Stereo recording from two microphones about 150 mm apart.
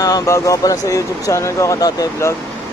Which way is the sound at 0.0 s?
20° left (ahead or behind).